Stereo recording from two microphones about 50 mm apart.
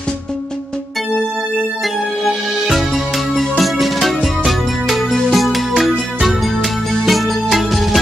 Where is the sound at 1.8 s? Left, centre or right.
Centre.